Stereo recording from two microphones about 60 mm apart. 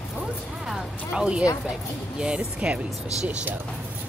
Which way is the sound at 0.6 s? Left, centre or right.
Centre.